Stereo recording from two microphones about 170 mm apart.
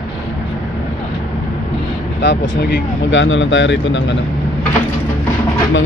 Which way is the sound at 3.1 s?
90° left.